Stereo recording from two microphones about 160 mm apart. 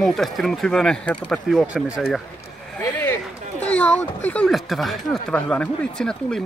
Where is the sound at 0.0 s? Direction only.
5° left (ahead or behind).